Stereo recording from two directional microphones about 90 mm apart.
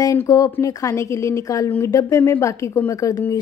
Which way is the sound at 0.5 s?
35° left (ahead or behind).